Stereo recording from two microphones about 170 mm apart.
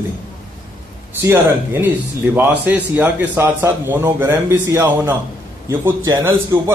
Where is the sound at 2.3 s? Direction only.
10° right (ahead or behind).